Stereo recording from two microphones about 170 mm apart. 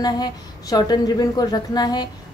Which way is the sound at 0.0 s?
25° left (ahead or behind).